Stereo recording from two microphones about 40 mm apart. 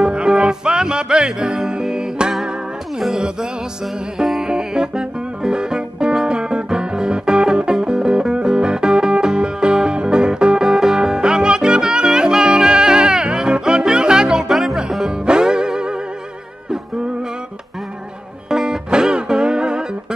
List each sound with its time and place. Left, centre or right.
0.0 s music: centre
3.8 s music: centre
4.4 s music: right
14.5 s music: centre
15.0 s music: centre
18.5 s music: centre